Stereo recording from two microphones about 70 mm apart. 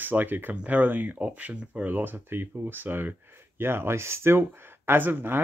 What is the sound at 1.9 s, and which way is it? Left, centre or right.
Speech, right.